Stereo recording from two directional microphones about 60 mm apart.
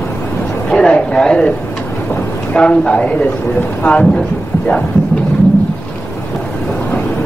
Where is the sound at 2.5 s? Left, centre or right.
Left.